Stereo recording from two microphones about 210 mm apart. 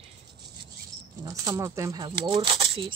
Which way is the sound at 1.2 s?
15° right (ahead or behind).